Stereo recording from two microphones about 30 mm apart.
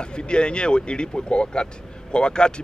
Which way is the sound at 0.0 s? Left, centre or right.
Left.